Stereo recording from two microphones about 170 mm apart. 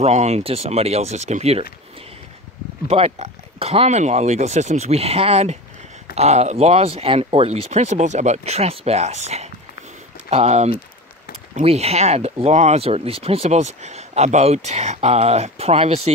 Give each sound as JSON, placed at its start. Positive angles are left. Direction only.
{"t": 0.0, "sound": "speech", "side_deg": -40}
{"t": 2.9, "sound": "speech", "side_deg": -35}